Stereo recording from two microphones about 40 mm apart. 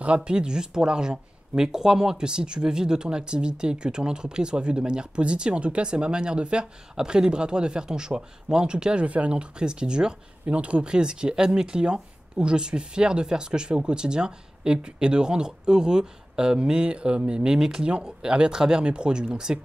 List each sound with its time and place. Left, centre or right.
0.0 s speech: right; by 2.2 s centre
2.2 s speech: right
9.0 s speech: right